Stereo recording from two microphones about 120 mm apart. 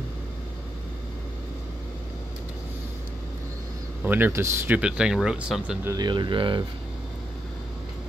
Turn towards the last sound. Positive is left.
turn(degrees=-45)  # may be behind; listen again after turning